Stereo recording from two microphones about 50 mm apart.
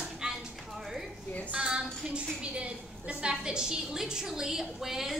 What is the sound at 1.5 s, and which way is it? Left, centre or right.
A woman's voice, centre.